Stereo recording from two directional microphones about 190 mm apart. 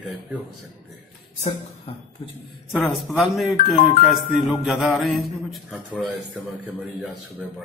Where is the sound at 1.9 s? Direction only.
30° left (ahead or behind).